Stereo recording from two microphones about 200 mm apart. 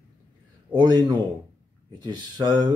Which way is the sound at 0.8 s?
20° right (ahead or behind).